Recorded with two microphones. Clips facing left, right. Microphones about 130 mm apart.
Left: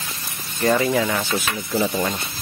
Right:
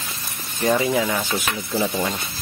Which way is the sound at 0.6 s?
15° right (ahead or behind).